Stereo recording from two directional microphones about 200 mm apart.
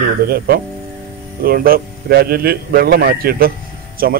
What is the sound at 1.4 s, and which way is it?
A man's voice, 45° right (ahead or behind).